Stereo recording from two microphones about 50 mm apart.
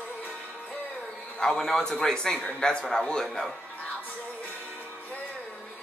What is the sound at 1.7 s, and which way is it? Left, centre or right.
Speech, centre.